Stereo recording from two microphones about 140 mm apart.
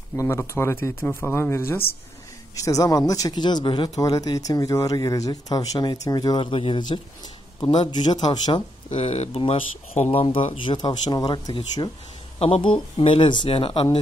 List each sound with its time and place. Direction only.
0.1 s speech: 20° left (ahead or behind)
6.4 s speech: 40° left (ahead or behind)
8.9 s speech: 50° left (ahead or behind); by 11.9 s 30° left (ahead or behind)
12.4 s speech: 45° left (ahead or behind)